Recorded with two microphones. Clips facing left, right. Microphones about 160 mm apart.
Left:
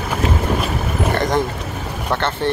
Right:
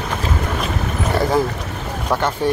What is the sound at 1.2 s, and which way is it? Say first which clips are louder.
Speech: right 1 dB; 5° right (ahead or behind).